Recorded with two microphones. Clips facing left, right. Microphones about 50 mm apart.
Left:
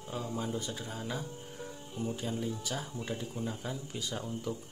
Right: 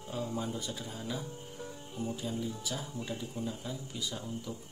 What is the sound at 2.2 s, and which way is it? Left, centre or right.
Speech, left.